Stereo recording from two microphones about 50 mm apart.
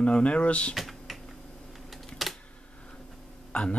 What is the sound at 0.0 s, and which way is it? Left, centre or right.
Speech, left.